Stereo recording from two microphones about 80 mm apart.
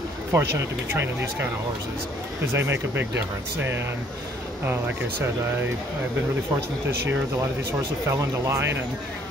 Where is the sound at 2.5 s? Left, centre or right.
Right.